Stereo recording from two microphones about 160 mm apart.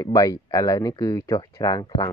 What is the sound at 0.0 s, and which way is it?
Speech, 20° left (ahead or behind).